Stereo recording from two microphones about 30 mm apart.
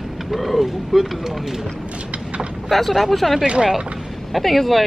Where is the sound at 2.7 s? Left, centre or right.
Centre.